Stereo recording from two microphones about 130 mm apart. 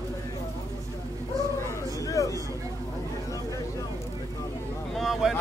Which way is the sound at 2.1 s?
25° left (ahead or behind).